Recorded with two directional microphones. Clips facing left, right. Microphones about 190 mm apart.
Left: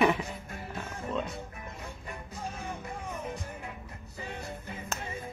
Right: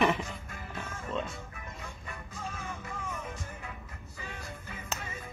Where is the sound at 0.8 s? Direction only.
15° left (ahead or behind).